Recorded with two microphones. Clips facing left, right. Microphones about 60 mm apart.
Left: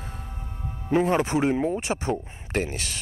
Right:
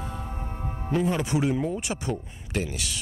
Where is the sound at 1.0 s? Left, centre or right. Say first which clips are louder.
Left 3 dB; left.